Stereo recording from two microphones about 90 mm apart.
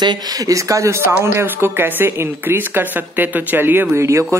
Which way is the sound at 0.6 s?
35° right (ahead or behind).